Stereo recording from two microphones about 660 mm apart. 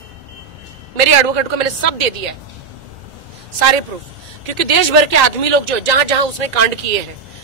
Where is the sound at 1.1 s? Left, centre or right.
Right.